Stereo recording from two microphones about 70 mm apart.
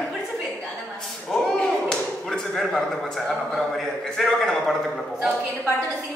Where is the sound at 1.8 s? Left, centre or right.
Centre.